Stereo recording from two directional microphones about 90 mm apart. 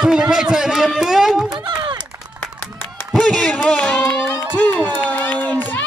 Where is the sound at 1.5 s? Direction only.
50° right (ahead or behind).